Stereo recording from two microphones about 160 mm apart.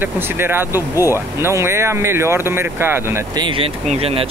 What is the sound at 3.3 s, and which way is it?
Speech, 30° right (ahead or behind).